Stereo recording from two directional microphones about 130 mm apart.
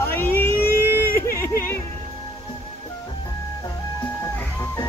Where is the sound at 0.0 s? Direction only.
15° left (ahead or behind).